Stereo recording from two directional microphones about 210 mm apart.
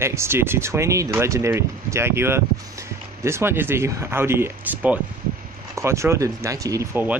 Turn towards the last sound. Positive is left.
turn(degrees=-15)  # may be behind; listen again after turning